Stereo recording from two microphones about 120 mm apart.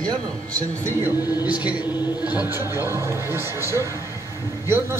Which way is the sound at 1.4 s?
10° right (ahead or behind).